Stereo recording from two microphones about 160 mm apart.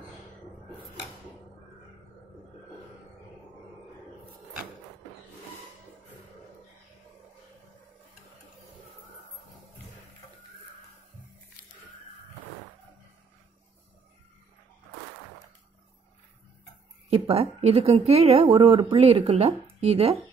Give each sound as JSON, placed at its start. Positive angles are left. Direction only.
{"t": 17.1, "sound": "speech", "side_deg": -40}